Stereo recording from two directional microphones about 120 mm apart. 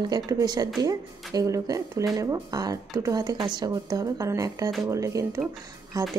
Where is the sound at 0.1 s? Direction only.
35° right (ahead or behind).